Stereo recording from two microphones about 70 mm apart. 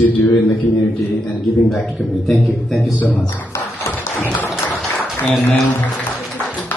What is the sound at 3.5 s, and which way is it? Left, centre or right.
Music, left.